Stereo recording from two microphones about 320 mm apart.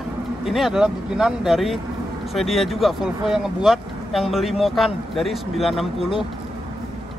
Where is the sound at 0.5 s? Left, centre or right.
Centre.